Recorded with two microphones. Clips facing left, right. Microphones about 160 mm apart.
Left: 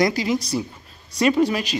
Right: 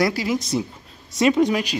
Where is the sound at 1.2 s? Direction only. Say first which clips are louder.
Right 1 dB; 20° right (ahead or behind).